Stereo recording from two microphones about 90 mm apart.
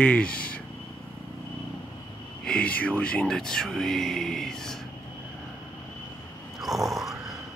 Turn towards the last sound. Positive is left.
turn(degrees=0)  # may be behind; listen again after turning